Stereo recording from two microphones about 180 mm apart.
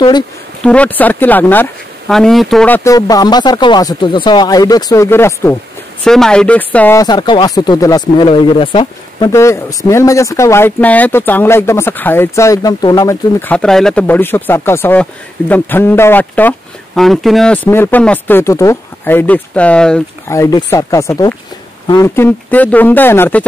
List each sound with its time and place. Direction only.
0.6 s speech: 5° left (ahead or behind)
7.0 s speech: 25° left (ahead or behind)
9.3 s speech: 15° left (ahead or behind)
20.2 s speech: 20° left (ahead or behind)